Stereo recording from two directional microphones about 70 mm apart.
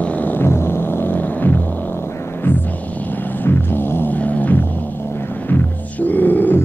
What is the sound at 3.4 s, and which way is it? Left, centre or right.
Music, left.